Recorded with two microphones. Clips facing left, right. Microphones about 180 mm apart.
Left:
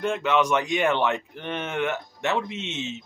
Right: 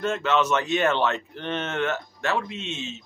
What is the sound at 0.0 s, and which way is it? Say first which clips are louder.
Speech: left 1 dB; 15° left (ahead or behind).